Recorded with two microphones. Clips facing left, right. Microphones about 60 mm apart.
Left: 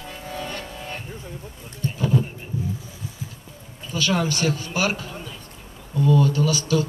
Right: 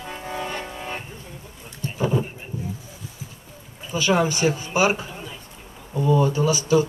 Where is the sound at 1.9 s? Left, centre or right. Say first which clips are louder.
Even; centre.